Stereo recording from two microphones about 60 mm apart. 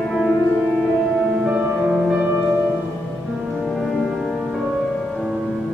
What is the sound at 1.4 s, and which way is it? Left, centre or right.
Music, centre.